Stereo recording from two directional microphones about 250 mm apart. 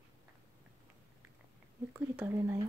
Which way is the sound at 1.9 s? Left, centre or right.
Centre.